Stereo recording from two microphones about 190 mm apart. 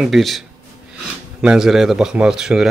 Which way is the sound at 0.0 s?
Centre (ahead or behind).